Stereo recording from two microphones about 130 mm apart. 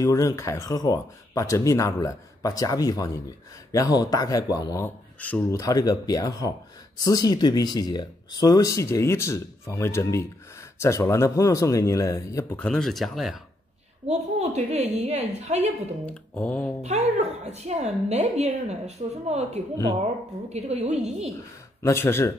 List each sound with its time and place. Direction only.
0.0 s speech: 25° left (ahead or behind)
4.8 s speech: 10° left (ahead or behind)
5.5 s speech: 25° left (ahead or behind)
12.5 s speech: 5° left (ahead or behind)
14.0 s a woman's voice: 60° right (ahead or behind)
16.1 s a sound: 10° left (ahead or behind)
16.8 s a woman's voice: 55° right (ahead or behind)
21.8 s speech: 20° left (ahead or behind)